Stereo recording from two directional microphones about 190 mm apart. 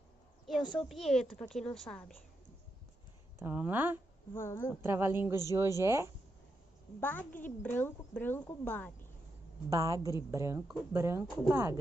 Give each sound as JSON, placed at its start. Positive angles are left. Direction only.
{"t": 0.5, "sound": "a woman's voice", "side_deg": 0}
{"t": 3.3, "sound": "a woman's voice", "side_deg": -10}
{"t": 4.3, "sound": "a woman's voice", "side_deg": 10}
{"t": 4.8, "sound": "a woman's voice", "side_deg": -15}
{"t": 7.0, "sound": "a woman's voice", "side_deg": 10}
{"t": 9.7, "sound": "a woman's voice", "side_deg": -15}